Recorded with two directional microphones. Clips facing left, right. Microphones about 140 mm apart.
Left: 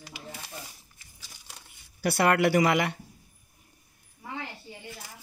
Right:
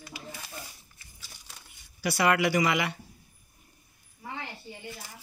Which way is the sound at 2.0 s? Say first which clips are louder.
Left 2 dB; 60° left (ahead or behind).